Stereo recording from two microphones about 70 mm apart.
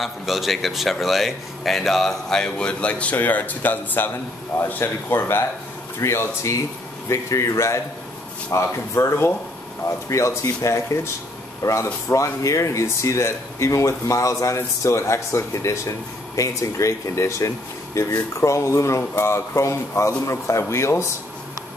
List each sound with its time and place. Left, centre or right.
0.0 s speech: centre; by 5.4 s left
5.9 s speech: left